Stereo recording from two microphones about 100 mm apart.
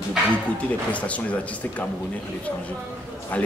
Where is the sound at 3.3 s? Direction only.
15° left (ahead or behind).